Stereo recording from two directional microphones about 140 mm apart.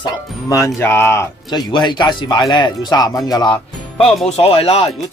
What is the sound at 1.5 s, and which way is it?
Speech, 30° left (ahead or behind).